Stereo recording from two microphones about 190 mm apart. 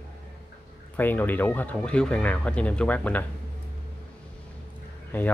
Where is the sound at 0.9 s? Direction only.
10° left (ahead or behind).